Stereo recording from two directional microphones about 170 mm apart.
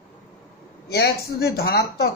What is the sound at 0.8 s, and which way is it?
Speech, 75° left (ahead or behind).